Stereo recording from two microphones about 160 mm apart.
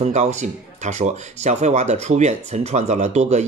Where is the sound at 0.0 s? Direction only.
45° right (ahead or behind).